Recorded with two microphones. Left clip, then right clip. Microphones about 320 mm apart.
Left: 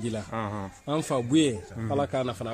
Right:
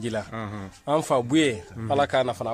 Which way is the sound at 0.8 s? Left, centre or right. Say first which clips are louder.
Right 6 dB; right.